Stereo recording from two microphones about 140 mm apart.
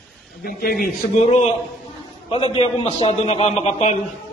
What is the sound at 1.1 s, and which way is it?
Speech, 50° left (ahead or behind).